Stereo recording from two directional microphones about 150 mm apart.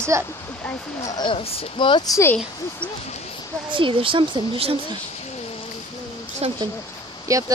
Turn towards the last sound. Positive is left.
turn(degrees=-20)  # may be behind; listen again after turning